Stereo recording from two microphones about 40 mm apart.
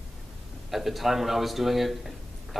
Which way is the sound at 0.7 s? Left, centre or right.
Centre.